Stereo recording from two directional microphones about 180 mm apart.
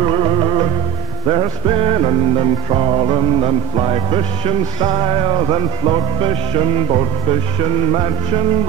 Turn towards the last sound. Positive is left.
turn(degrees=-30)  # may be behind; listen again after turning